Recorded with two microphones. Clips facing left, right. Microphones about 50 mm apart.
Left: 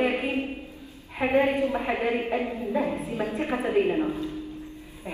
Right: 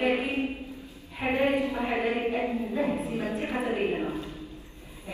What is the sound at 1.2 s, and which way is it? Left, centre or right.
A woman's voice, left.